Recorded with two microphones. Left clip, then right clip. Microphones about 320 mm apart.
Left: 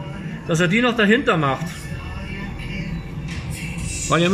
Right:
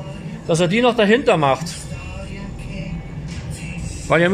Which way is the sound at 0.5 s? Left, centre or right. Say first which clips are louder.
Right 3 dB; centre.